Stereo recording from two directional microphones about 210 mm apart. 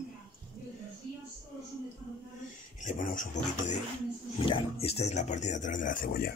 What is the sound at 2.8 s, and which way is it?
Speech, 40° left (ahead or behind).